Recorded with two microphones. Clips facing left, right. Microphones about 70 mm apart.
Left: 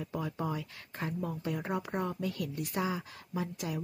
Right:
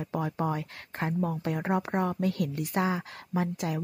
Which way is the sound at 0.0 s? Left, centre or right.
Right.